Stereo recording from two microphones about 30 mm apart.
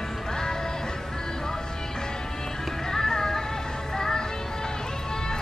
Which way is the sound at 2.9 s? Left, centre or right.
Centre.